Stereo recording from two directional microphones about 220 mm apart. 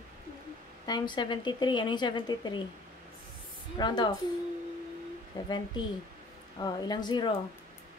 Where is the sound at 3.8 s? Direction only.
20° left (ahead or behind).